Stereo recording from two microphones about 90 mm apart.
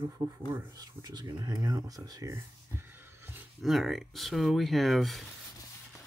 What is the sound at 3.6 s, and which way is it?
Speech, centre (ahead or behind).